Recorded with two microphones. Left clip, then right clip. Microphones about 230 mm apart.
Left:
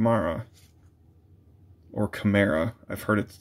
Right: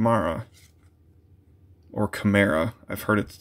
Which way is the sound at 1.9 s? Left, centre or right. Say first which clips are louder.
Right 2 dB; centre.